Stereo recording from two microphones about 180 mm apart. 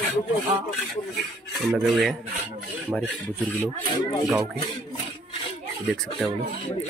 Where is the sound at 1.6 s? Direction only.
Centre (ahead or behind).